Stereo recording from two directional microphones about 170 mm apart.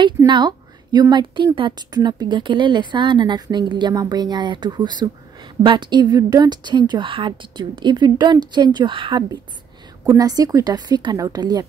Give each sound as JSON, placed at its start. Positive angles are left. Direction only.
{"t": 0.3, "sound": "a woman's voice", "side_deg": -25}